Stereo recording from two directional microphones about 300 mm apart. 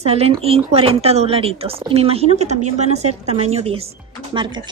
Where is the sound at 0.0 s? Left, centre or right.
Centre.